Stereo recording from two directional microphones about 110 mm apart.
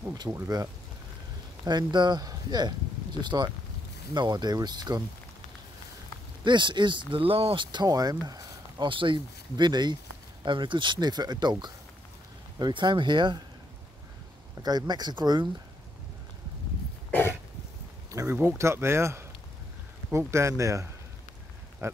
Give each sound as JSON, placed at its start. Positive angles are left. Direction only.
{"t": 0.3, "sound": "speech", "side_deg": -30}
{"t": 1.7, "sound": "speech", "side_deg": -40}
{"t": 6.4, "sound": "speech", "side_deg": -45}
{"t": 8.8, "sound": "speech", "side_deg": -50}
{"t": 12.5, "sound": "speech", "side_deg": -40}
{"t": 14.6, "sound": "speech", "side_deg": -40}
{"t": 18.3, "sound": "speech", "side_deg": -20}